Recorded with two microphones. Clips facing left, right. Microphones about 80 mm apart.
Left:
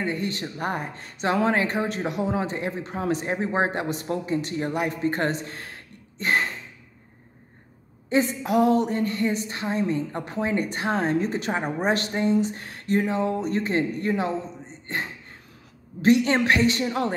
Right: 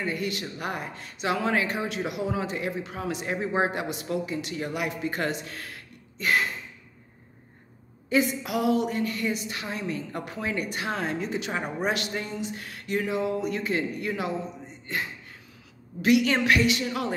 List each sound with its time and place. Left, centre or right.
0.0 s speech: left
8.1 s a woman's voice: left
16.0 s speech: left